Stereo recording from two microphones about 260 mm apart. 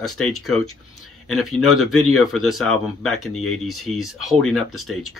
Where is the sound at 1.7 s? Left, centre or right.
Left.